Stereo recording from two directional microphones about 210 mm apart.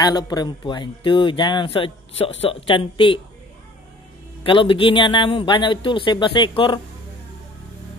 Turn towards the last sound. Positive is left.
turn(degrees=25)  # may be behind; listen again after turning